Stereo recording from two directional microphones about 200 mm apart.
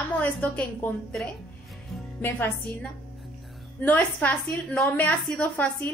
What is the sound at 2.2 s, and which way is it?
A woman's voice, 10° left (ahead or behind).